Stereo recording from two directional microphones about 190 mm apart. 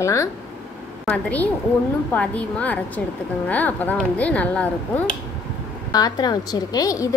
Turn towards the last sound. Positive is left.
turn(degrees=20)  # may be behind; listen again after turning